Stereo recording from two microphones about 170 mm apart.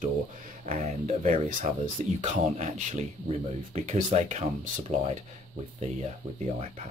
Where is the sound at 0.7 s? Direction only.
40° right (ahead or behind).